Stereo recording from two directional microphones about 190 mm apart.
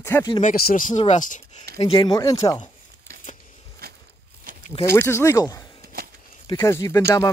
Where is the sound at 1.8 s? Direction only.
30° left (ahead or behind).